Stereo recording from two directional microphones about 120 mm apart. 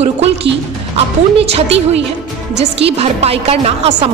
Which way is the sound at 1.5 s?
55° right (ahead or behind).